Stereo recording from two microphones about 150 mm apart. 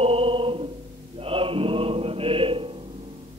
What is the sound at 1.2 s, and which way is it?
Chant, 35° right (ahead or behind).